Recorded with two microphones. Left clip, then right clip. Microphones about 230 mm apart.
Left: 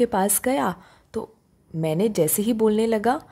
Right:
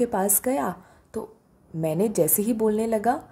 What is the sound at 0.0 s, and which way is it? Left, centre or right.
A woman's voice, left.